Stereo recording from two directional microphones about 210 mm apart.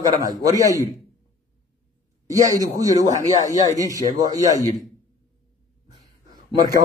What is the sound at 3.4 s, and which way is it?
Speech, 15° left (ahead or behind).